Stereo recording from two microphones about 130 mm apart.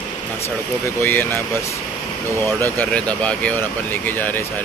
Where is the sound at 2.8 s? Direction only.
10° left (ahead or behind).